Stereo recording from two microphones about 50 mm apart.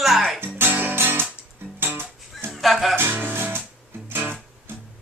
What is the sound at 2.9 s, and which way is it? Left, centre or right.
Music, right.